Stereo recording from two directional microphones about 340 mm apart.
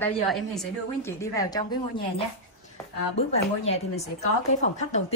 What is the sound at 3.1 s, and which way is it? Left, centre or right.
A woman's voice, centre.